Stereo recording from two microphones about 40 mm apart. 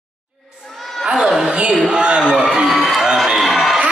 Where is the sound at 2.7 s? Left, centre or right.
Centre.